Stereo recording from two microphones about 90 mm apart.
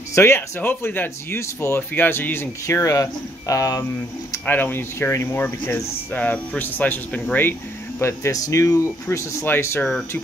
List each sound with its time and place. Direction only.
0.1 s speech: 30° left (ahead or behind)
2.6 s speech: 35° left (ahead or behind)
4.5 s speech: 20° left (ahead or behind)
8.0 s speech: 35° left (ahead or behind)